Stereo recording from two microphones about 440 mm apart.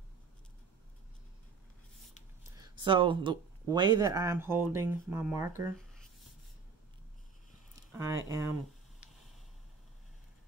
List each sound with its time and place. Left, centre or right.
2.5 s speech: centre
8.0 s speech: centre